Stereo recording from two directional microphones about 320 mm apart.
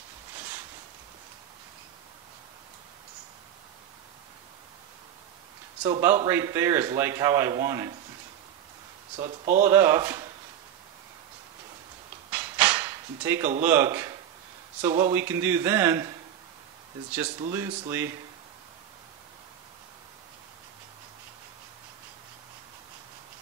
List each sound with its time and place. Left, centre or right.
5.8 s a man's voice: centre
9.2 s speech: right
9.7 s a man's voice: centre
12.3 s a sound: centre
13.6 s a man's voice: centre
17.1 s a man's voice: centre